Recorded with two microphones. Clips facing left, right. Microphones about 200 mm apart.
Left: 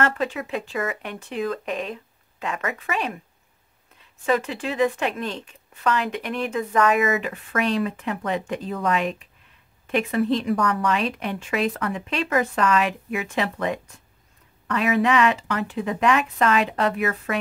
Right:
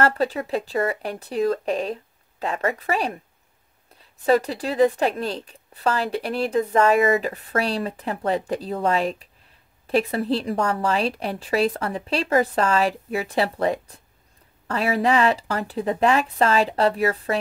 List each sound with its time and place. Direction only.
0.0 s speech: 35° right (ahead or behind)